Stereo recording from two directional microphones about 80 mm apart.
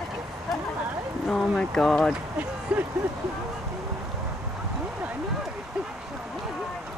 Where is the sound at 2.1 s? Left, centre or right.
Centre.